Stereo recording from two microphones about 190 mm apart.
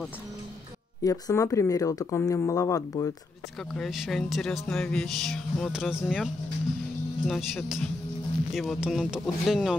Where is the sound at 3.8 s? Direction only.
Centre (ahead or behind).